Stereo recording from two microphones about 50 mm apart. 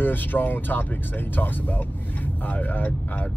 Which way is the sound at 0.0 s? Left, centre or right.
Left.